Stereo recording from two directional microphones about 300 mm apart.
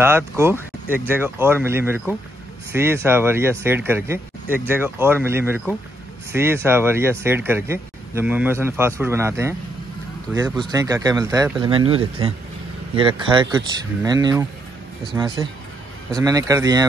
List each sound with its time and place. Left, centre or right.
0.0 s speech: centre
10.6 s speech: centre
11.6 s speech: centre